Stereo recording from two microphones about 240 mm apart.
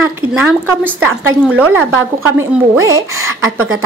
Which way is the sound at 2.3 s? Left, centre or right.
Centre.